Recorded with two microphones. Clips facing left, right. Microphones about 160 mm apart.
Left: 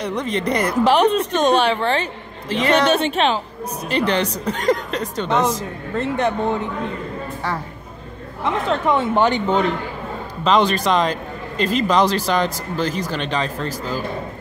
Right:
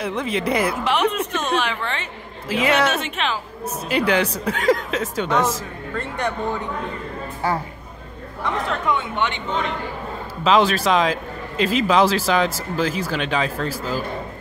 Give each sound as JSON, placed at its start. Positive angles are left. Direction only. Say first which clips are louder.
{"t": 0.0, "sound": "a man's voice", "louder": "left 1 dB", "side_deg": -5}
{"t": 0.8, "sound": "a woman's voice", "louder": "left 5 dB", "side_deg": 35}
{"t": 2.5, "sound": "a woman's voice", "louder": "left 2 dB", "side_deg": -5}
{"t": 2.9, "sound": "a woman's voice", "louder": "left 7 dB", "side_deg": 35}
{"t": 3.9, "sound": "a woman's voice", "louder": "even", "side_deg": -10}
{"t": 5.9, "sound": "speech", "louder": "left 5 dB", "side_deg": 25}
{"t": 8.6, "sound": "a woman's voice", "louder": "left 8 dB", "side_deg": 35}
{"t": 10.4, "sound": "a man's voice", "louder": "even", "side_deg": -5}